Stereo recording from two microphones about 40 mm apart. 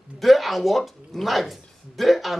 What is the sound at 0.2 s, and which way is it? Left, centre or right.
A man's voice, centre.